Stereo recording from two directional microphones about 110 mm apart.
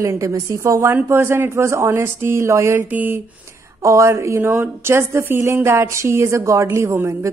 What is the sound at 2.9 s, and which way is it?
Speech, 15° right (ahead or behind).